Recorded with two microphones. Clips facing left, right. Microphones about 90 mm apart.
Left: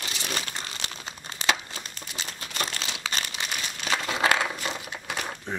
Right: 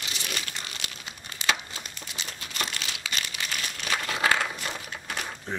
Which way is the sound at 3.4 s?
25° left (ahead or behind).